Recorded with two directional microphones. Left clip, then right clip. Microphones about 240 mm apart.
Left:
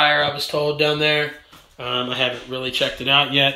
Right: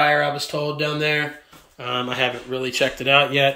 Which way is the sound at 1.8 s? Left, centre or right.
Centre.